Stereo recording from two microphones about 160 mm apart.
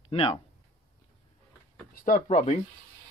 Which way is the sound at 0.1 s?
35° left (ahead or behind).